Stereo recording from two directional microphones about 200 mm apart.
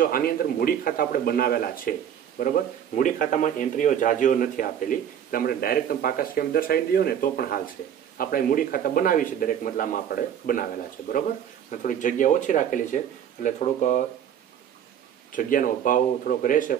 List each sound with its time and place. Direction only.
0.0 s a man's voice: 45° left (ahead or behind)
15.3 s a man's voice: 40° left (ahead or behind)